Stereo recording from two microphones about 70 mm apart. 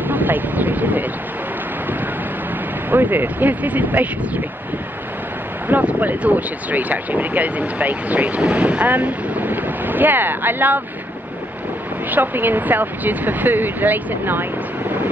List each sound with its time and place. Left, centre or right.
0.1 s speech: right
2.9 s speech: right
5.7 s speech: right
12.1 s speech: right